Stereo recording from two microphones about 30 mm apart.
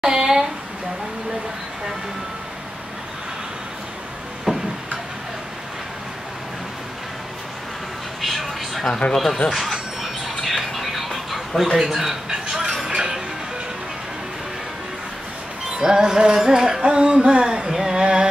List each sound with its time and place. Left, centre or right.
0.0 s a sound: right
4.5 s a sound: centre
8.2 s television: centre
9.5 s speech: centre
10.5 s music: centre
11.8 s speech: centre
12.3 s music: right
15.8 s music: right
16.8 s a sound: right
17.6 s music: centre